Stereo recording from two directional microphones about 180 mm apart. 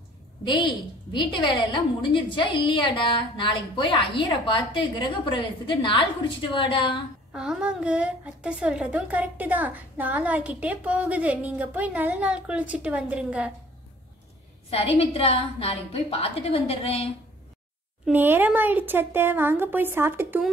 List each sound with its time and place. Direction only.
0.5 s a woman's voice: 25° left (ahead or behind)
7.3 s a woman's voice: 5° right (ahead or behind)
14.7 s a woman's voice: 35° left (ahead or behind)
18.0 s a woman's voice: 10° right (ahead or behind)